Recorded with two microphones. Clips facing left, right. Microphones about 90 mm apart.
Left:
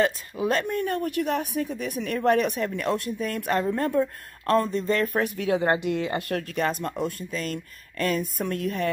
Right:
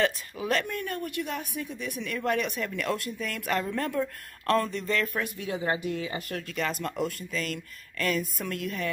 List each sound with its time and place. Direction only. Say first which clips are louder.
0.0 s speech: left 4 dB; 25° left (ahead or behind); by 2.7 s 45° left (ahead or behind)
2.7 s speech: left 4 dB; 30° left (ahead or behind)
5.2 s speech: left 7 dB; 65° left (ahead or behind); by 8.9 s 40° left (ahead or behind)